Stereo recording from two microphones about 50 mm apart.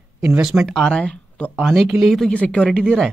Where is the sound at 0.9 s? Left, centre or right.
Left.